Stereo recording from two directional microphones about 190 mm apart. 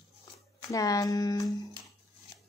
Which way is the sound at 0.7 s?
20° left (ahead or behind).